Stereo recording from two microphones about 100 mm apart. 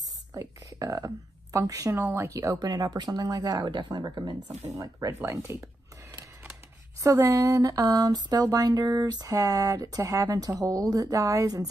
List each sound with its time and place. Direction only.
0.3 s a sound: 35° right (ahead or behind)
0.9 s speech: 35° right (ahead or behind)
4.6 s speech: 25° right (ahead or behind)
4.8 s speech: 35° right (ahead or behind)
7.0 s speech: 30° right (ahead or behind)